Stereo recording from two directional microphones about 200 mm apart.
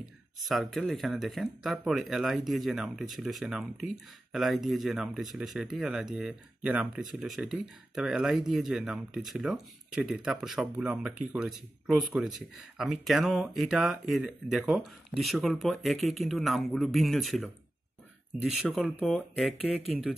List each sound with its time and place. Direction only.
0.5 s speech: centre (ahead or behind)